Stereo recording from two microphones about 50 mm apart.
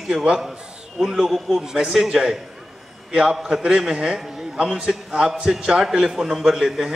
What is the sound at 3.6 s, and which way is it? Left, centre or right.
A man's voice, centre.